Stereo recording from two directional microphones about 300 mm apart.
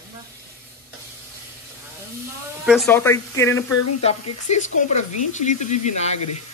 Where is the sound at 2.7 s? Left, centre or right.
Centre.